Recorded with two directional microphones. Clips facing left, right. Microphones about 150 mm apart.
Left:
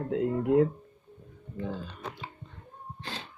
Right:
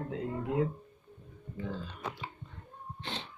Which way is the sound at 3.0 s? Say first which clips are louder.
Even; 25° right (ahead or behind).